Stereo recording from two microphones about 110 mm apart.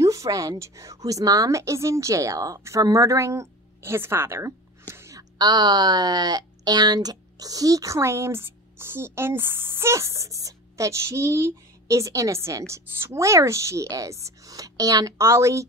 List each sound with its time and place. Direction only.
0.0 s a woman's voice: 30° right (ahead or behind)